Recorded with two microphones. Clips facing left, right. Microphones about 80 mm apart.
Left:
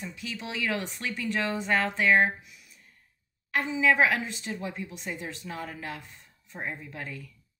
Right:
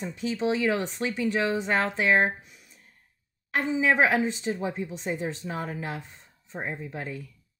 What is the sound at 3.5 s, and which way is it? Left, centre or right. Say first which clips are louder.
Speech: right 1 dB; right.